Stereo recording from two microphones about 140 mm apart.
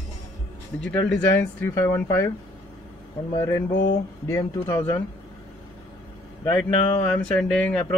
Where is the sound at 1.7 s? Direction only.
20° left (ahead or behind).